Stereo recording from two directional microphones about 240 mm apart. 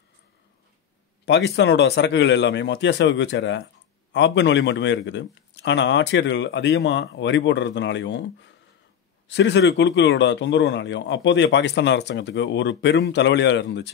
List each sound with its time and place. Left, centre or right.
1.2 s a man's voice: left